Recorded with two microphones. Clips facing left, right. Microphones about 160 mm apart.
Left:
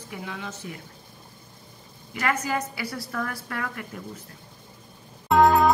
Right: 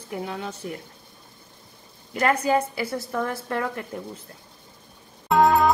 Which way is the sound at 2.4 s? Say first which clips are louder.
Right 6 dB; 30° right (ahead or behind).